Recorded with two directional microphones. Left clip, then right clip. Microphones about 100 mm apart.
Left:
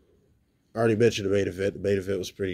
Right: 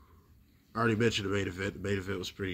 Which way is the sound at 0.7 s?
25° left (ahead or behind).